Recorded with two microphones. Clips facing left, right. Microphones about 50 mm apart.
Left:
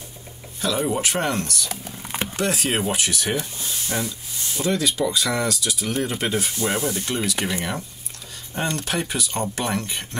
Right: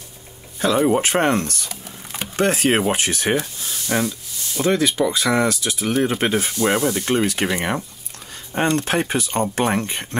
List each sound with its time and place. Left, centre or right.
0.6 s speech: right
1.7 s a sound: left
2.3 s speech: right